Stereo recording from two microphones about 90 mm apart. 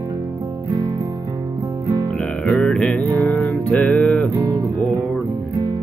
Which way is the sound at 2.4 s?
10° left (ahead or behind).